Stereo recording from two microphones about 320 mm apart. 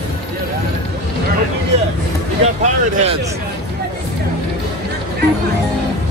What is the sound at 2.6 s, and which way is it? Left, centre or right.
Speech, right.